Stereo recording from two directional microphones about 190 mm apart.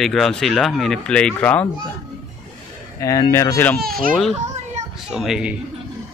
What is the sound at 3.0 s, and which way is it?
Speech, 15° left (ahead or behind).